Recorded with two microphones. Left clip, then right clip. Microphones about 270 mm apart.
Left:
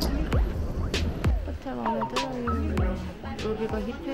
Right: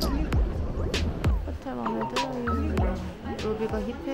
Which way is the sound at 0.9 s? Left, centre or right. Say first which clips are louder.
Left 2 dB; centre.